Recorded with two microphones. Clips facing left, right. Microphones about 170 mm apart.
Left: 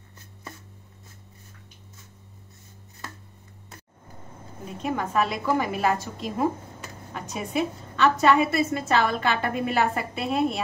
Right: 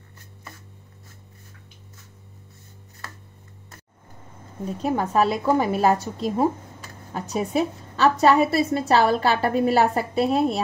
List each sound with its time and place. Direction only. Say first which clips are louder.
4.6 s a woman's voice: right 4 dB; 35° right (ahead or behind)